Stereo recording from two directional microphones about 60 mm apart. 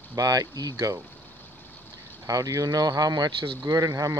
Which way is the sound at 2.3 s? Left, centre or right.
Right.